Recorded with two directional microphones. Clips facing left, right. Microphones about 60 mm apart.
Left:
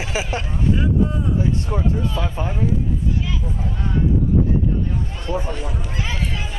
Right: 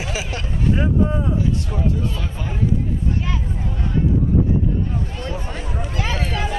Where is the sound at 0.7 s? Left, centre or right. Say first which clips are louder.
Right 1 dB; right.